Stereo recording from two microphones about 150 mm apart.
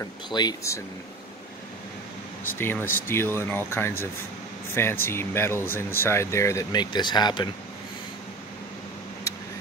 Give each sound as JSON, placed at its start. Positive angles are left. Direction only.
{"t": 0.3, "sound": "speech", "side_deg": 25}
{"t": 2.6, "sound": "speech", "side_deg": 15}